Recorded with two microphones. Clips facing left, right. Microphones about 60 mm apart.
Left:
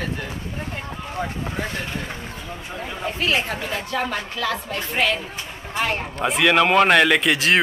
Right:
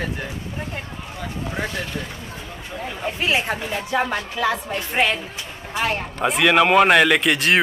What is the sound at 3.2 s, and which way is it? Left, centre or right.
Speech, centre.